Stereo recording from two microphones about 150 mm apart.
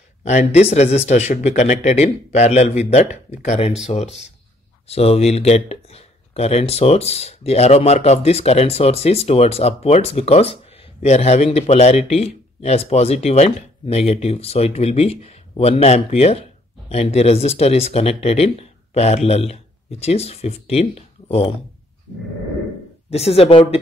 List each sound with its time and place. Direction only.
0.2 s speech: 50° left (ahead or behind)
23.0 s a woman's voice: 45° left (ahead or behind)